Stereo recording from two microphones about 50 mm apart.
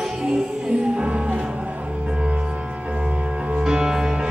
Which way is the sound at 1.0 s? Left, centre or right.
Right.